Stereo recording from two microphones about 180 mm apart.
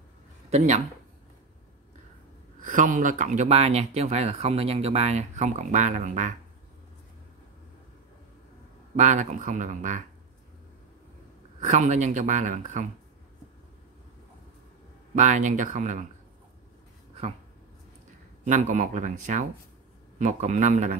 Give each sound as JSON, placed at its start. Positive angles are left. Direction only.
{"t": 0.5, "sound": "speech", "side_deg": -40}
{"t": 2.6, "sound": "speech", "side_deg": -45}
{"t": 8.9, "sound": "speech", "side_deg": -40}
{"t": 11.6, "sound": "speech", "side_deg": -40}
{"t": 15.1, "sound": "speech", "side_deg": -40}
{"t": 18.4, "sound": "speech", "side_deg": -45}